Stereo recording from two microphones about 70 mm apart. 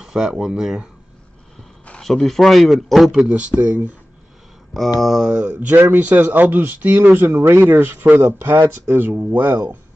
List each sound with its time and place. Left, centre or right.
0.0 s speech: centre
1.9 s speech: centre
3.3 s speech: centre
5.0 s speech: centre
5.8 s speech: right
7.2 s speech: right